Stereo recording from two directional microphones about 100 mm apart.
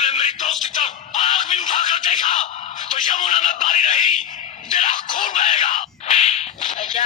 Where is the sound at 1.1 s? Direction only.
90° left.